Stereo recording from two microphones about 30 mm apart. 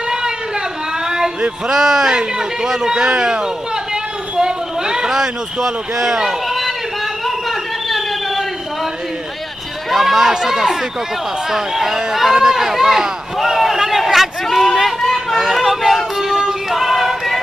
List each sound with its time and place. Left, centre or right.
1.0 s a sound: right
1.7 s a man's voice: centre
7.2 s a sound: centre
9.8 s speech: centre
14.8 s run: centre
15.3 s vehicle: centre
16.2 s female singing: centre